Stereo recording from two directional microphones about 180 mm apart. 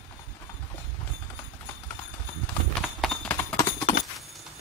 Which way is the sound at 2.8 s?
Centre (ahead or behind).